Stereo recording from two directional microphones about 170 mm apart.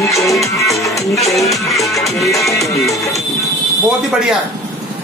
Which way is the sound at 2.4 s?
20° left (ahead or behind).